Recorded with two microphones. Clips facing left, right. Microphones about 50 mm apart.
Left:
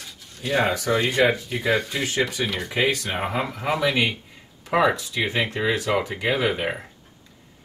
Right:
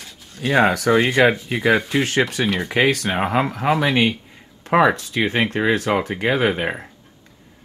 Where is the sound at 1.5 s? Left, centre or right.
Right.